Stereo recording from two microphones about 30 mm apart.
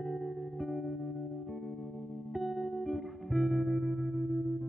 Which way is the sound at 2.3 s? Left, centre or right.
Centre.